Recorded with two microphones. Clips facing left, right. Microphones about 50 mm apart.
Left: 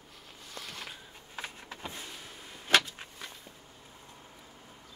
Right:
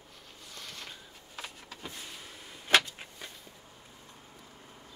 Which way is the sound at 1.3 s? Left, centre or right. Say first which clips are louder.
Left 3 dB; left.